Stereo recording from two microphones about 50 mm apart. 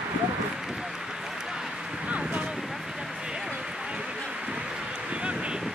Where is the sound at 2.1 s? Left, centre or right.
Right.